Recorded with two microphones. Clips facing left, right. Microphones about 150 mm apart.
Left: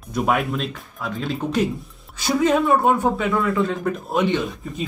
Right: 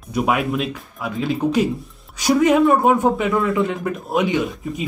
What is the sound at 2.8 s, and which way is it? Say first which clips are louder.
Speech: right 3 dB; 15° right (ahead or behind).